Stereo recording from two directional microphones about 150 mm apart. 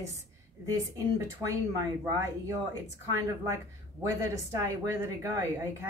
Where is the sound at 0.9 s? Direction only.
20° right (ahead or behind).